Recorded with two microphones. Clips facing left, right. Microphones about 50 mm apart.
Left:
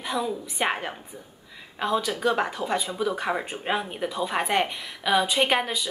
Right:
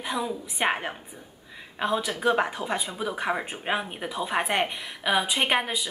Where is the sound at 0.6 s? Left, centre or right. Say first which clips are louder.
Right 1 dB; centre.